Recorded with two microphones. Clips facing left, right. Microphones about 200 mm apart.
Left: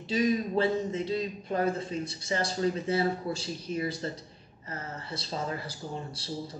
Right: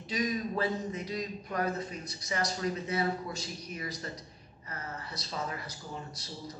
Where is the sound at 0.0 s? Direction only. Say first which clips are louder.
Left 6 dB; 30° left (ahead or behind).